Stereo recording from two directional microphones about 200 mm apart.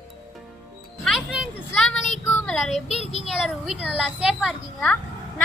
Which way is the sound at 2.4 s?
5° left (ahead or behind).